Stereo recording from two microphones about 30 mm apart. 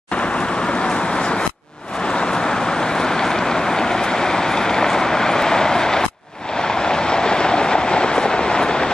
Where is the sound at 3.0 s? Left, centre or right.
Left.